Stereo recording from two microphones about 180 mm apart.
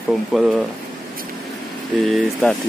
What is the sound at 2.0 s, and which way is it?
Speech, centre (ahead or behind).